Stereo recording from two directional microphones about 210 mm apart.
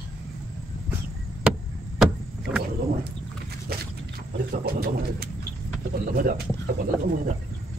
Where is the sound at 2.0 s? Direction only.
Centre (ahead or behind).